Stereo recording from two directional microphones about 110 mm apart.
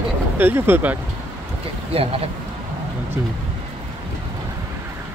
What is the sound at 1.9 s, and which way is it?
Speech, 60° right (ahead or behind).